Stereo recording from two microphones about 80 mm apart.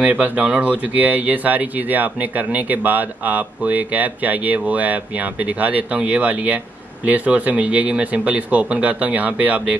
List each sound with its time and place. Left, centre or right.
0.0 s speech: centre